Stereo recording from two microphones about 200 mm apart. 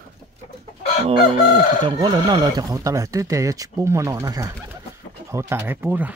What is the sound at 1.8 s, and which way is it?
Speech, 20° right (ahead or behind).